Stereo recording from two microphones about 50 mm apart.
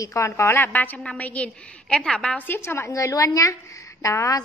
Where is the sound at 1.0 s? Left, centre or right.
Left.